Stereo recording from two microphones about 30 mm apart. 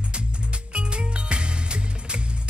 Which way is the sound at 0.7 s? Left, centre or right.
Right.